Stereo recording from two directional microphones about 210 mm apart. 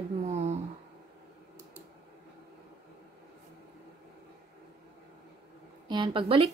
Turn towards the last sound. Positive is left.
turn(degrees=-25)  # may be behind; listen again after turning